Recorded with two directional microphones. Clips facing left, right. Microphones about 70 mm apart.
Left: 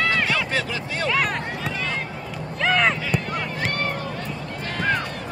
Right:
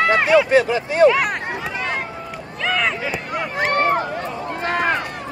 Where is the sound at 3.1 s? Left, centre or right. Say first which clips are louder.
Right 1 dB; centre.